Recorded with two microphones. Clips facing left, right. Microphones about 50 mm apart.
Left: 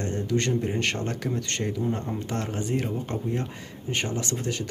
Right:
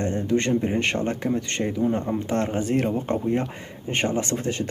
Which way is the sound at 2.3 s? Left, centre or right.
Right.